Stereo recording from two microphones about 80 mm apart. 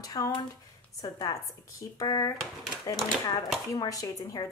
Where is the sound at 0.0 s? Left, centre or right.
Left.